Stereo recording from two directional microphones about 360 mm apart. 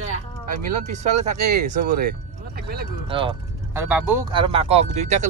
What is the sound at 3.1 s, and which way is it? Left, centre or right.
Speech, centre.